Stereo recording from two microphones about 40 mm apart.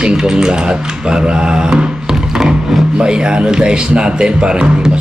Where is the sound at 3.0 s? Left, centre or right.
Right.